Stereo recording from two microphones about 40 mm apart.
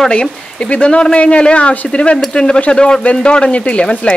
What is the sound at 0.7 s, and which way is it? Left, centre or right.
Speech, left.